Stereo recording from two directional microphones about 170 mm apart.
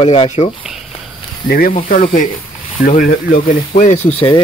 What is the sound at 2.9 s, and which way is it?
Speech, 50° left (ahead or behind).